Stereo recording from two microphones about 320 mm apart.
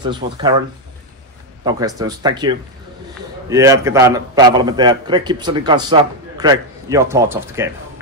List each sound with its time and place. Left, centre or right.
0.0 s a man's voice: centre
1.6 s a man's voice: centre